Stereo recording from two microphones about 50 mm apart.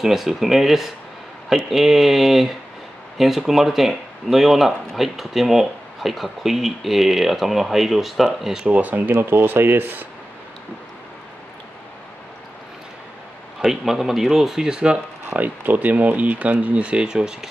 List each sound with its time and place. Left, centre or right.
0.0 s speech: centre
8.6 s speech: right
13.6 s speech: centre
15.2 s speech: right; by 17.5 s centre